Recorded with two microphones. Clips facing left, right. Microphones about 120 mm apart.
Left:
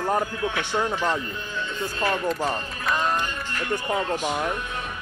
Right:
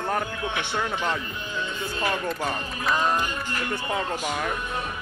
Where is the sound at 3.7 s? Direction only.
10° left (ahead or behind).